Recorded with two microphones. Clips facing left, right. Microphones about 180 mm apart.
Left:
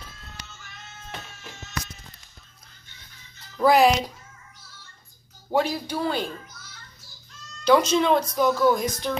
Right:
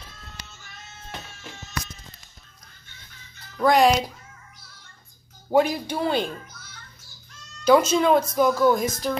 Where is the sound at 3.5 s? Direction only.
5° left (ahead or behind).